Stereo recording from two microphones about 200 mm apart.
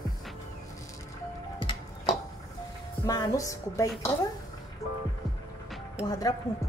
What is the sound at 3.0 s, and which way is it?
Speech, 15° left (ahead or behind).